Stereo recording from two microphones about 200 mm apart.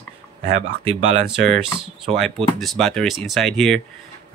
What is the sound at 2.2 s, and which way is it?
Speech, centre (ahead or behind).